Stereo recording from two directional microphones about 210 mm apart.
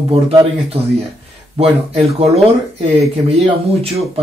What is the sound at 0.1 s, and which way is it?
Speech, 25° right (ahead or behind).